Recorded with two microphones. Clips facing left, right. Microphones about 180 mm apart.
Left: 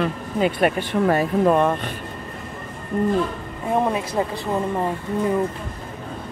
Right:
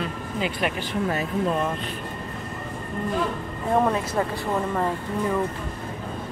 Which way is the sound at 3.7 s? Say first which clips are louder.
Left 1 dB; 15° left (ahead or behind).